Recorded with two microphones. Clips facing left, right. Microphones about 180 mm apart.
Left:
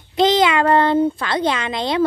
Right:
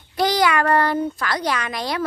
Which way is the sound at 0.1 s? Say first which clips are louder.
Left 4 dB; 20° left (ahead or behind).